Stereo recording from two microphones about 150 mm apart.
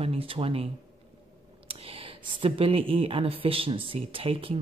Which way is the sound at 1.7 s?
40° right (ahead or behind).